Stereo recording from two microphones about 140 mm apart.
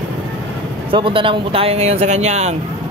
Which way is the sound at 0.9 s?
40° right (ahead or behind).